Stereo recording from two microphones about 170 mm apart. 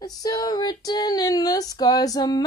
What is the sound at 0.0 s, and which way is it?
Female singing, 20° left (ahead or behind).